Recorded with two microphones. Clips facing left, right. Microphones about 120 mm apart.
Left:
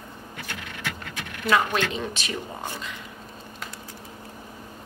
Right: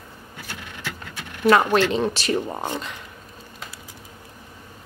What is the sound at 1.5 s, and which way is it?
Speech, 40° right (ahead or behind).